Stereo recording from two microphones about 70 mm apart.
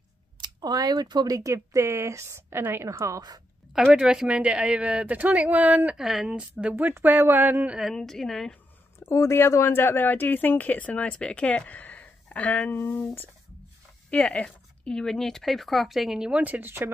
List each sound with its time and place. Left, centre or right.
0.4 s speech: right
1.3 s a woman's voice: right
2.9 s a woman's voice: right
3.9 s speech: centre
5.9 s speech: centre
6.8 s speech: right
7.9 s a woman's voice: centre
9.0 s speech: left
12.7 s speech: left
14.1 s a woman's voice: centre
16.3 s speech: right